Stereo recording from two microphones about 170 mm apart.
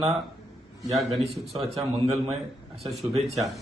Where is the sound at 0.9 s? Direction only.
Centre (ahead or behind).